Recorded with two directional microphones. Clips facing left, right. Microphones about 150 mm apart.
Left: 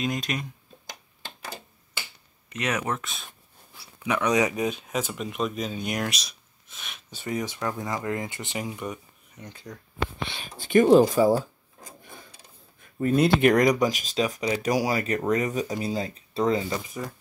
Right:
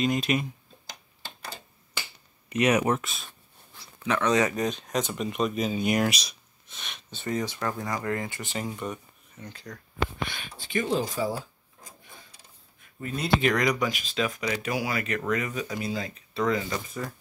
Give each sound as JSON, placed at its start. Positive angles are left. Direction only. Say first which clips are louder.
{"t": 0.0, "sound": "speech", "louder": "right 4 dB", "side_deg": 0}
{"t": 2.5, "sound": "speech", "louder": "right 6 dB", "side_deg": -10}
{"t": 3.3, "sound": "speech", "louder": "left 1 dB", "side_deg": 10}
{"t": 10.6, "sound": "speech", "louder": "left 11 dB", "side_deg": 50}
{"t": 13.0, "sound": "speech", "louder": "left 6 dB", "side_deg": 55}